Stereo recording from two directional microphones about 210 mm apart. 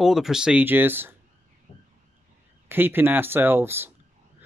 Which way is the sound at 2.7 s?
10° right (ahead or behind).